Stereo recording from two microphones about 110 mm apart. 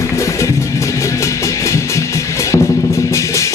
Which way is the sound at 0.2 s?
30° left (ahead or behind).